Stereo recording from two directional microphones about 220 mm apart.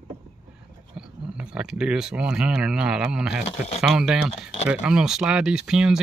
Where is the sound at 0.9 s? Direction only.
5° right (ahead or behind).